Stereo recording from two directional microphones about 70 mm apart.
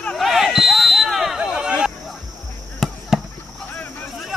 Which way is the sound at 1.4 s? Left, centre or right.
Centre.